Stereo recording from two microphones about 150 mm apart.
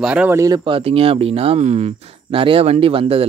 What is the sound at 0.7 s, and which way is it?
Speech, 40° right (ahead or behind).